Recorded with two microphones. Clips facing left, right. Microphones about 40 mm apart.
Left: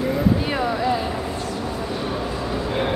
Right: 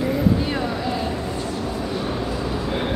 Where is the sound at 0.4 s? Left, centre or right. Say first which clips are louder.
Left 2 dB; centre.